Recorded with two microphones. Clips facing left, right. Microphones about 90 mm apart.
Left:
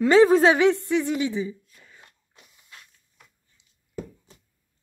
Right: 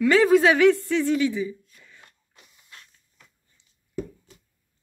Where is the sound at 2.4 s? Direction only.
5° left (ahead or behind).